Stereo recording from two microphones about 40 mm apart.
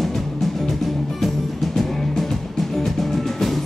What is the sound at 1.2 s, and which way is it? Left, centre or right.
Music, centre.